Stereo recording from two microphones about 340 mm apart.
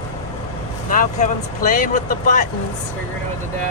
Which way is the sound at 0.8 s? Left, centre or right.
Left.